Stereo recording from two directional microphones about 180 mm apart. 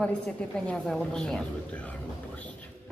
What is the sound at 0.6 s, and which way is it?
A woman's voice, centre (ahead or behind).